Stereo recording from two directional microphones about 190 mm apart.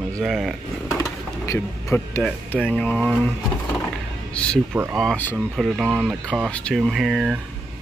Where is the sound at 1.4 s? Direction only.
15° left (ahead or behind).